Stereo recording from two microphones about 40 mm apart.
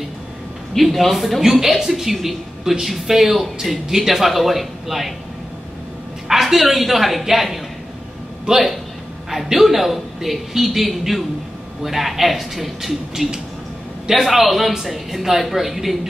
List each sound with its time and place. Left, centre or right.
0.7 s a man's voice: centre
6.2 s a woman's voice: centre
8.5 s speech: centre
9.3 s a man's voice: centre